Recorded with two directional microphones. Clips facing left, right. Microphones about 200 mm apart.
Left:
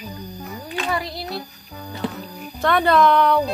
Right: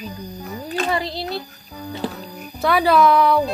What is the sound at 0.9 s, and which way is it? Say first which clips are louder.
Speech: even; 25° right (ahead or behind).